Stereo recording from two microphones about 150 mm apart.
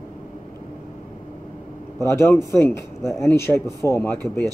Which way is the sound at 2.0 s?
15° left (ahead or behind).